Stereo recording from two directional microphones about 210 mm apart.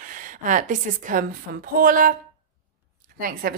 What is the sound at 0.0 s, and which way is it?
A woman's voice, 40° right (ahead or behind).